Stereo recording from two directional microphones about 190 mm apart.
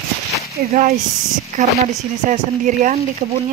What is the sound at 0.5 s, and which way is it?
Speech, 45° right (ahead or behind).